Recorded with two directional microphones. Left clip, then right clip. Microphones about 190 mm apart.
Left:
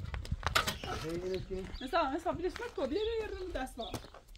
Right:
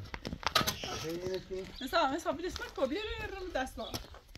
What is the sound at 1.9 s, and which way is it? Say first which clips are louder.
Speech: right 2 dB; 30° right (ahead or behind).